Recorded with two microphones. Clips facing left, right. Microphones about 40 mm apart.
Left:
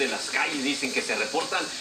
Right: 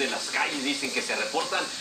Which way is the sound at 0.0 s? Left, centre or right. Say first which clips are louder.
Left 1 dB; centre.